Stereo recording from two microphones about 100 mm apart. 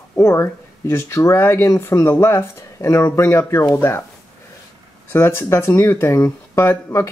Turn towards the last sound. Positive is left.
turn(degrees=25)  # may be behind; listen again after turning